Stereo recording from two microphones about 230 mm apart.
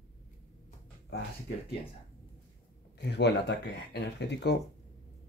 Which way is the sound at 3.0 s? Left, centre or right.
Left.